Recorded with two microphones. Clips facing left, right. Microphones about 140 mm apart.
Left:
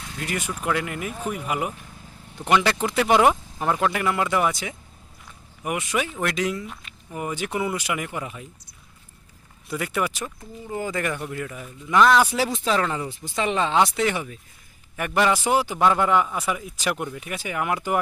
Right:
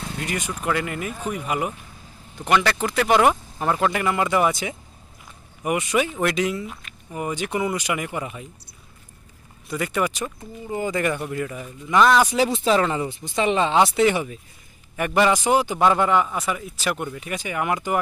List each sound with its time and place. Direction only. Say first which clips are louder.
0.2 s speech: left 1 dB; 5° left (ahead or behind)
2.4 s speech: even; 20° left (ahead or behind)
3.5 s speech: right 1 dB; centre (ahead or behind)
9.7 s speech: right 2 dB; 5° left (ahead or behind)